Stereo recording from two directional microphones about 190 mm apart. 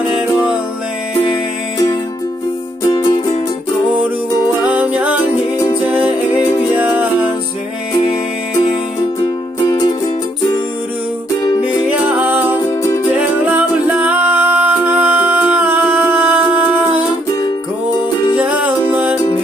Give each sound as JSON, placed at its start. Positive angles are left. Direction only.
{"t": 2.8, "sound": "music", "side_deg": 20}
{"t": 4.6, "sound": "music", "side_deg": -5}
{"t": 6.4, "sound": "music", "side_deg": 25}
{"t": 9.7, "sound": "music", "side_deg": 25}
{"t": 11.9, "sound": "music", "side_deg": -5}
{"t": 12.6, "sound": "music", "side_deg": 15}
{"t": 13.1, "sound": "music", "side_deg": -5}
{"t": 18.4, "sound": "music", "side_deg": -5}